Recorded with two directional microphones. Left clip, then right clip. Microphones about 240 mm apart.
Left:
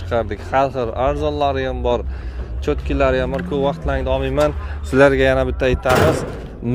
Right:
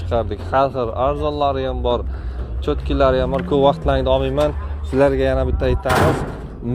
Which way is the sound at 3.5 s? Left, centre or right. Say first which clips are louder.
Right 5 dB; right.